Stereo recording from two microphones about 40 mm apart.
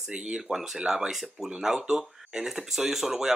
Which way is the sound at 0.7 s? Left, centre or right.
Centre.